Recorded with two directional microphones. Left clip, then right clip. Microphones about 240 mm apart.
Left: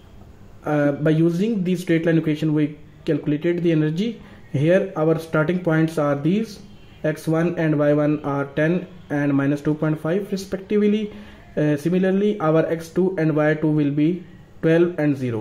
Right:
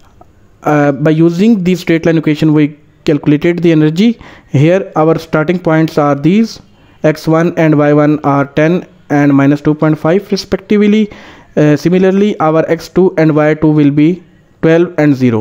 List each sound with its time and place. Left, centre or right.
0.7 s speech: right